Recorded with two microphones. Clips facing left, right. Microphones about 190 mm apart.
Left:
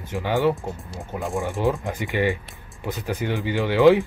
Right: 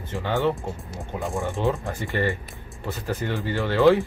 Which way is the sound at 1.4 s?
15° left (ahead or behind).